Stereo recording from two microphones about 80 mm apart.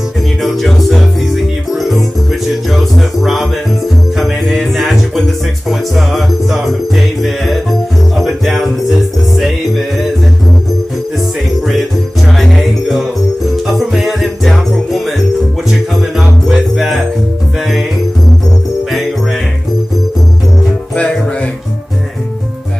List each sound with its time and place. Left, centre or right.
0.4 s music: centre
12.4 s music: centre
20.9 s music: centre